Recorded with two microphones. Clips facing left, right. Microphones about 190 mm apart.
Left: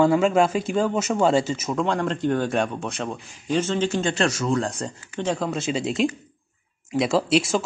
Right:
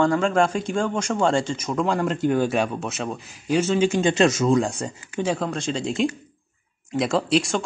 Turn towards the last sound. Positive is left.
turn(degrees=0)  # may be behind; listen again after turning